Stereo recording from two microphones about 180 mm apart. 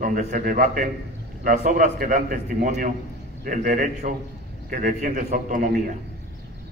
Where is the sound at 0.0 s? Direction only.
45° right (ahead or behind).